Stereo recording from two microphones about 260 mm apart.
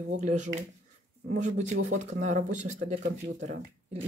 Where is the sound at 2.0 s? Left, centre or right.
Right.